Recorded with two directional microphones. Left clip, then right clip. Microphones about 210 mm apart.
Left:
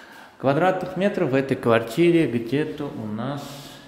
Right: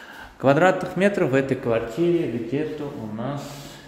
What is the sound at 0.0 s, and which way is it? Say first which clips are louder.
A man's voice: right 3 dB; centre (ahead or behind).